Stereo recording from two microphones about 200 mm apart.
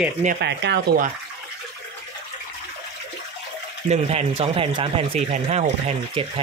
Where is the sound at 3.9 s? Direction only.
30° right (ahead or behind).